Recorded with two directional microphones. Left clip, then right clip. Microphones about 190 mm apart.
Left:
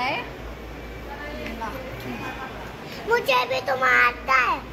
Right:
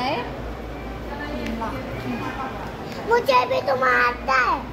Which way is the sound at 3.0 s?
25° left (ahead or behind).